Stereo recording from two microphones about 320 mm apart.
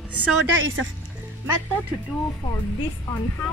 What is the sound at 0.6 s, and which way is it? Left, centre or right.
Speech, right.